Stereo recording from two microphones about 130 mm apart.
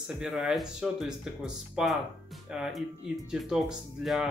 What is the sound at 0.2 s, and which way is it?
Speech, 5° right (ahead or behind).